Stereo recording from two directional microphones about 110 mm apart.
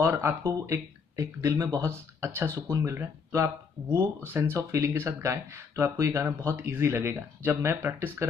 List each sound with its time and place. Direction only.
0.0 s speech: 25° right (ahead or behind)